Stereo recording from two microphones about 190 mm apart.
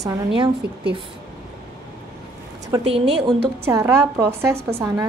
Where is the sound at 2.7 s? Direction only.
30° right (ahead or behind).